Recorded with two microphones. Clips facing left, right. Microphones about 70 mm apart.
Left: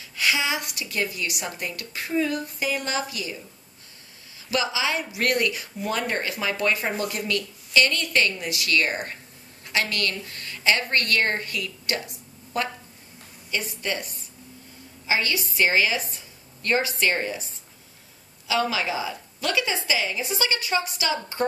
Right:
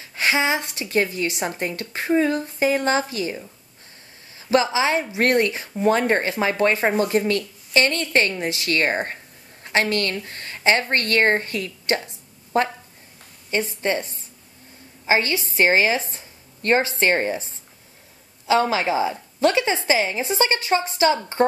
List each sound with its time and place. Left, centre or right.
0.0 s a woman's voice: right
4.5 s a woman's voice: right
18.5 s a woman's voice: right